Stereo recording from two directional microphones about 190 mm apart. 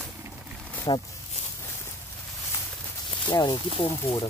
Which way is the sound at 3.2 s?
25° left (ahead or behind).